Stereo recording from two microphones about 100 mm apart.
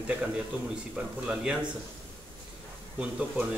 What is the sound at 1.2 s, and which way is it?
Speech, 10° right (ahead or behind).